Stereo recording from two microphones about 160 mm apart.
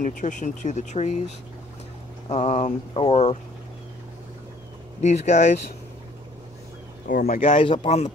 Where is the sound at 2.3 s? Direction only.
40° left (ahead or behind).